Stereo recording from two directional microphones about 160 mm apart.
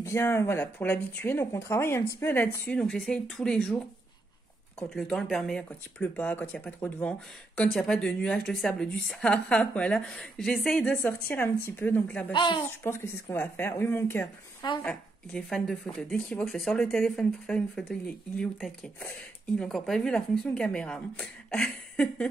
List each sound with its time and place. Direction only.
0.0 s speech: 15° left (ahead or behind)
4.8 s speech: centre (ahead or behind)
12.3 s speech: 30° left (ahead or behind)
12.8 s speech: 15° left (ahead or behind)